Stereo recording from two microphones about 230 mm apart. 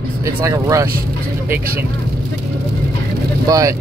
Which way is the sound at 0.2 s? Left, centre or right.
Centre.